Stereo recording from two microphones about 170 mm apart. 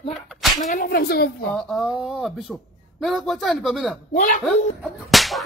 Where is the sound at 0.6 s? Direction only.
55° left (ahead or behind).